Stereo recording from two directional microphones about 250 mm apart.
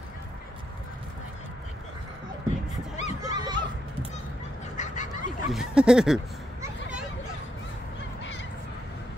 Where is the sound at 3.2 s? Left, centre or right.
Centre.